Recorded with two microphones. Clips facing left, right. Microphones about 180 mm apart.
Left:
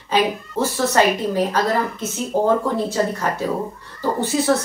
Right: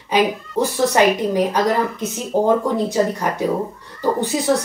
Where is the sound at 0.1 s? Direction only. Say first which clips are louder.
Right 2 dB; 15° right (ahead or behind).